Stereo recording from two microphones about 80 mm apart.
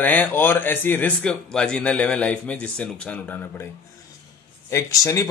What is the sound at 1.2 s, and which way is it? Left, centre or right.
Speech, centre.